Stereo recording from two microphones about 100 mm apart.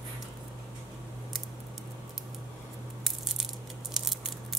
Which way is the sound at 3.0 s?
5° right (ahead or behind).